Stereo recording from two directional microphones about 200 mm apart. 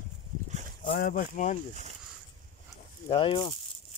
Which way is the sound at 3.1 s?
25° left (ahead or behind).